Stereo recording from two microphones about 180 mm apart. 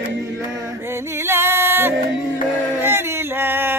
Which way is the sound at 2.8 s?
15° right (ahead or behind).